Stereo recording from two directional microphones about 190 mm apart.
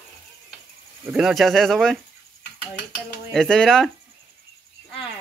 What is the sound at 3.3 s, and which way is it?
Speech, 5° left (ahead or behind).